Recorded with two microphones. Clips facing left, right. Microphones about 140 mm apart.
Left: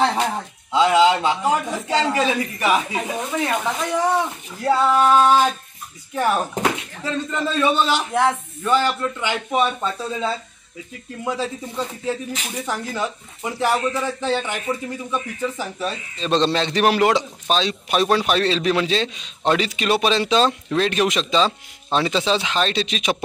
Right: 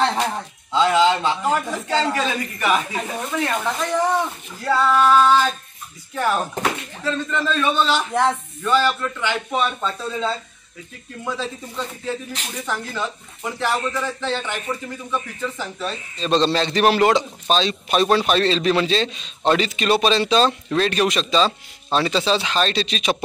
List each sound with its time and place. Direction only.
0.0 s speech: 10° left (ahead or behind)
4.6 s female singing: 20° left (ahead or behind)
6.1 s a man's voice: 15° left (ahead or behind)
11.2 s a man's voice: 10° left (ahead or behind)